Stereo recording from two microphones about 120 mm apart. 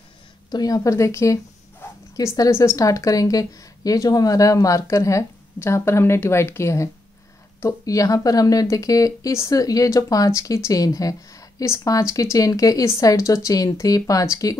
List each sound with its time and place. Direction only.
0.5 s a woman's voice: 30° left (ahead or behind)